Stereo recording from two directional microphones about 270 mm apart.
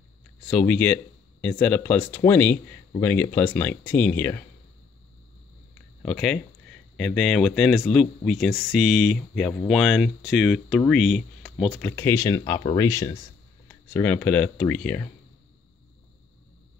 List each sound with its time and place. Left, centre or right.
0.4 s speech: centre
6.0 s speech: centre